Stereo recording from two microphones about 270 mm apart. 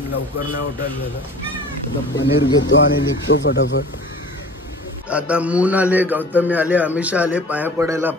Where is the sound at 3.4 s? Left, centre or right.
Left.